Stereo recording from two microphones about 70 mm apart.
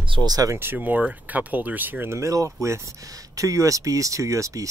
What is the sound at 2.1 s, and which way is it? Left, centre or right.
Speech, right.